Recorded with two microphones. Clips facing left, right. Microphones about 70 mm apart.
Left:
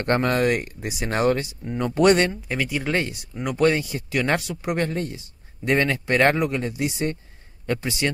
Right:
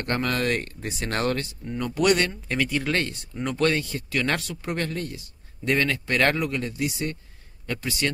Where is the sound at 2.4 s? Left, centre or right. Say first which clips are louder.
Even; centre.